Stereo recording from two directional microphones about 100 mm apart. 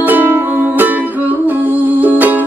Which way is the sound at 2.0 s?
20° right (ahead or behind).